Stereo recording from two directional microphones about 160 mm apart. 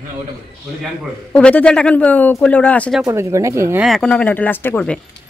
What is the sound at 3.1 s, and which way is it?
Speech, 15° right (ahead or behind).